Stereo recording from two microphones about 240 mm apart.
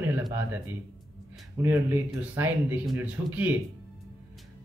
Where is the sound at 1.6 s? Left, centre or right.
Centre.